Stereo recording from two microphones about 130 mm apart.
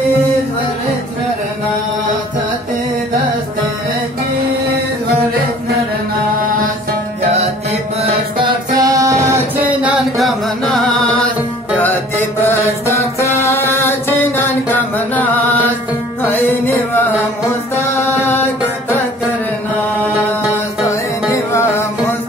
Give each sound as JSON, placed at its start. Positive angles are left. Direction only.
{"t": 8.0, "sound": "mantra", "side_deg": -40}
{"t": 8.7, "sound": "music", "side_deg": -25}
{"t": 9.7, "sound": "music", "side_deg": -10}
{"t": 11.8, "sound": "mantra", "side_deg": 15}
{"t": 16.2, "sound": "music", "side_deg": 15}
{"t": 21.5, "sound": "music", "side_deg": 20}